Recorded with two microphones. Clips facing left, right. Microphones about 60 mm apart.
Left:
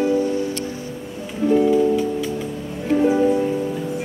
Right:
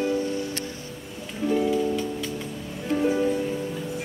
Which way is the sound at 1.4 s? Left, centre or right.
Centre.